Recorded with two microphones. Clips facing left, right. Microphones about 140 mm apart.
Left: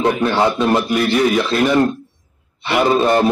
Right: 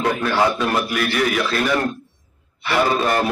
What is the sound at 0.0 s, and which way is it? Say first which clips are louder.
A man's voice: left 3 dB; 20° left (ahead or behind).